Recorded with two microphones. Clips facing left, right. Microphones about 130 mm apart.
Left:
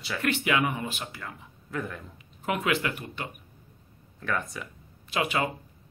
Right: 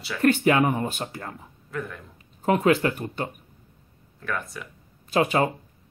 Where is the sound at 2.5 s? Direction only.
35° right (ahead or behind).